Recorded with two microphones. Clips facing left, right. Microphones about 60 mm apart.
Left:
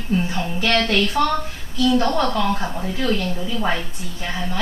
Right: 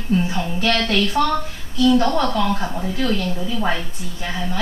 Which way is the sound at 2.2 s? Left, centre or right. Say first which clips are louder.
Even; left.